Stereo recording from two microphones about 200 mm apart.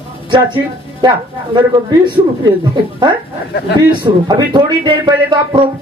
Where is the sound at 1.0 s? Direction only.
20° right (ahead or behind).